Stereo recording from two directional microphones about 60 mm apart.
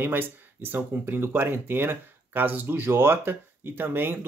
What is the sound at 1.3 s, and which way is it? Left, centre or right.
Speech, right.